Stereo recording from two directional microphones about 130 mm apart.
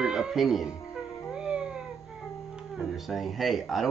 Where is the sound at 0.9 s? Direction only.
5° right (ahead or behind).